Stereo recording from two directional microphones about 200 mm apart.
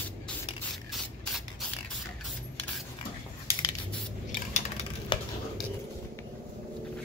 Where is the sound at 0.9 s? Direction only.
Centre (ahead or behind).